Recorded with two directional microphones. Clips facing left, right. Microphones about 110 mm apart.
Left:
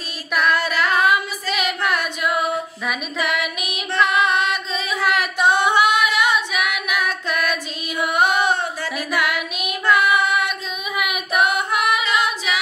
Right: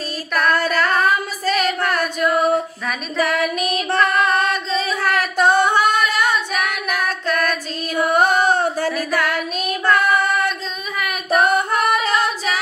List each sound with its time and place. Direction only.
0.4 s singing: 45° right (ahead or behind)
0.8 s female singing: 45° right (ahead or behind)
2.3 s singing: 40° right (ahead or behind)
3.2 s music: 40° right (ahead or behind)
5.1 s female singing: 45° right (ahead or behind)
6.0 s female singing: 10° left (ahead or behind)
6.5 s singing: 40° right (ahead or behind)
9.9 s female singing: 40° right (ahead or behind)
11.2 s singing: 40° right (ahead or behind)